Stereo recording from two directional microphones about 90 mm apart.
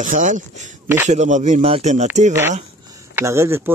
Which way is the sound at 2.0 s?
25° right (ahead or behind).